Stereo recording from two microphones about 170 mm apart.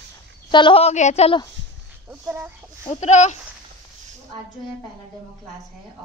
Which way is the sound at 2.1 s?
15° right (ahead or behind).